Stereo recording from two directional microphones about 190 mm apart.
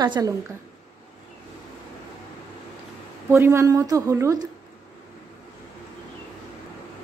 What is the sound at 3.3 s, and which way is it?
A woman's voice, 15° right (ahead or behind).